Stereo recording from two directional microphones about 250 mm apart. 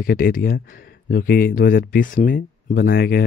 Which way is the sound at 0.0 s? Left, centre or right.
Left.